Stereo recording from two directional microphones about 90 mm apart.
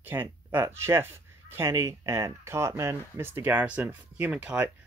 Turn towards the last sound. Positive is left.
turn(degrees=-15)  # may be behind; listen again after turning